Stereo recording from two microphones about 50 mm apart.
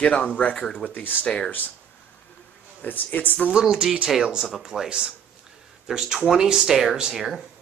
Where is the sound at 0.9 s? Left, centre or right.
Left.